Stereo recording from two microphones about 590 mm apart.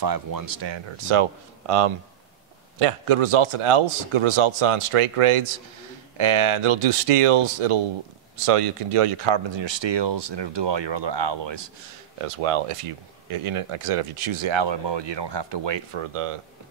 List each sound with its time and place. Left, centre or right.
0.0 s speech: right
12.2 s speech: right